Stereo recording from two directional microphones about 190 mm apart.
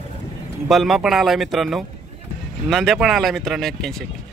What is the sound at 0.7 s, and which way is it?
Speech, centre (ahead or behind).